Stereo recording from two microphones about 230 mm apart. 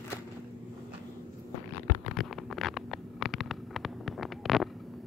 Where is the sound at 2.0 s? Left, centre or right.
Centre.